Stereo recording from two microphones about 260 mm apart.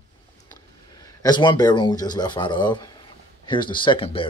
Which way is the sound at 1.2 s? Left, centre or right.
Centre.